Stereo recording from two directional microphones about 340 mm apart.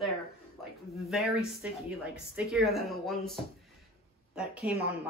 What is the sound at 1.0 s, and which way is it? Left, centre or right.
Speech, centre.